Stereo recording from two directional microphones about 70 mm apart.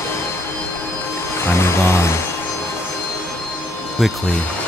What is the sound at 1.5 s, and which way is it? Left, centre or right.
Speech, left.